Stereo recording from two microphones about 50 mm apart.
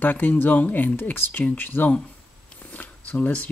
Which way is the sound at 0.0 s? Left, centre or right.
Left.